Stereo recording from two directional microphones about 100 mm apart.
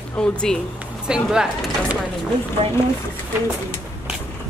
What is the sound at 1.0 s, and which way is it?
Speech, 5° right (ahead or behind).